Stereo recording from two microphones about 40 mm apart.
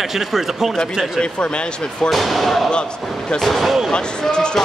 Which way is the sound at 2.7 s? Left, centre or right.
Left.